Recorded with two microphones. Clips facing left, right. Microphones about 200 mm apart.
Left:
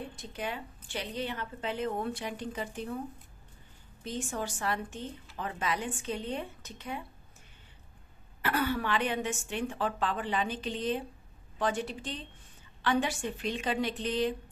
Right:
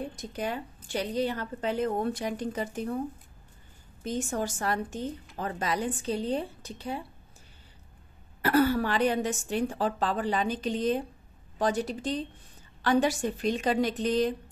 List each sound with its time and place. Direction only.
0.1 s a woman's voice: 40° right (ahead or behind)
4.0 s a woman's voice: 45° right (ahead or behind)
8.4 s a woman's voice: 40° right (ahead or behind)